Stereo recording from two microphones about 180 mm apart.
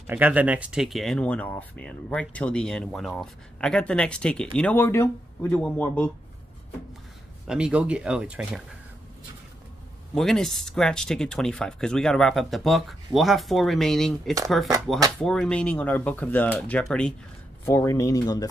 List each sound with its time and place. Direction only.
0.0 s speech: 10° right (ahead or behind); by 6.1 s 10° left (ahead or behind)
7.4 s speech: 5° right (ahead or behind)
10.1 s speech: centre (ahead or behind); by 18.5 s 20° left (ahead or behind)